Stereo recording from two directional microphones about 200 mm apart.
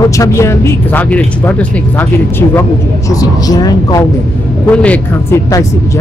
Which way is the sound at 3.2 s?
20° left (ahead or behind).